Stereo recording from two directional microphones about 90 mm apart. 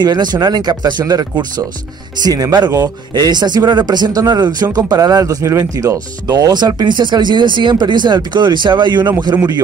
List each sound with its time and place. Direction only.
0.0 s speech: 55° right (ahead or behind)